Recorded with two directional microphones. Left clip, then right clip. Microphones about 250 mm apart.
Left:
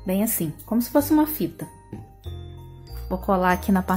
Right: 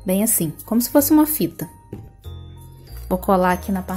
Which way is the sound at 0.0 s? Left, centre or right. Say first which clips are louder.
Right 4 dB; centre.